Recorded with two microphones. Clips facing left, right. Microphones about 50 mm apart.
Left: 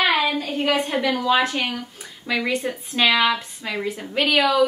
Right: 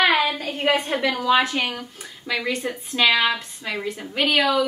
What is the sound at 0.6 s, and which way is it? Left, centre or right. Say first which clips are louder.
Speech: right 2 dB; right.